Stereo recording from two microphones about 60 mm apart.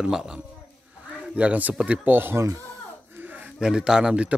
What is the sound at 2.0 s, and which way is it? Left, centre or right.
Speech, right.